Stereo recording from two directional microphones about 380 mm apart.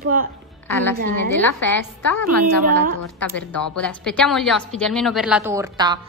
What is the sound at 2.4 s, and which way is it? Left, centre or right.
Speech, right.